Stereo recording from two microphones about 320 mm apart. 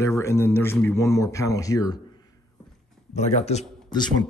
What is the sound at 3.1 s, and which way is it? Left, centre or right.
Speech, left.